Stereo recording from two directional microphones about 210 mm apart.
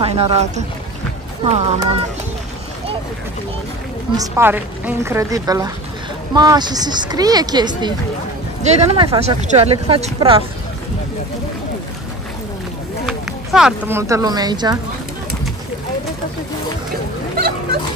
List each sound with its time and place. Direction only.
0.0 s speech: 30° right (ahead or behind)
4.2 s a woman's voice: 10° right (ahead or behind)
8.6 s speech: 30° right (ahead or behind)
13.0 s speech: centre (ahead or behind); by 14.8 s 20° right (ahead or behind)